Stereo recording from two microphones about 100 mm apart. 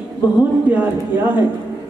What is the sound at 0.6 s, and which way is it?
Speech, 15° right (ahead or behind).